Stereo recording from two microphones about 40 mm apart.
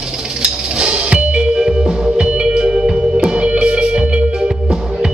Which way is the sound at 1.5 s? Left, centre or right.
Centre.